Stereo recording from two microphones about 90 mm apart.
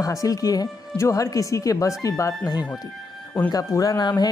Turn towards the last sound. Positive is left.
turn(degrees=50)  # may be behind; listen again after turning